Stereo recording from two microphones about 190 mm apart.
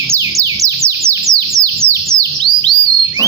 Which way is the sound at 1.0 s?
15° right (ahead or behind).